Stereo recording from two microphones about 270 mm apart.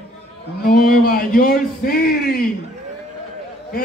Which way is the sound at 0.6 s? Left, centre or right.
Left.